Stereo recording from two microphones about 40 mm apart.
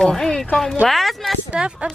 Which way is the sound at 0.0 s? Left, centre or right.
Centre.